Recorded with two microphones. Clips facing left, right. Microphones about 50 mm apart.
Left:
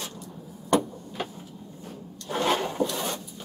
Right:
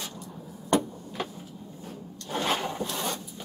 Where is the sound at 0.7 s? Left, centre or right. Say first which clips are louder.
Left 2 dB; centre.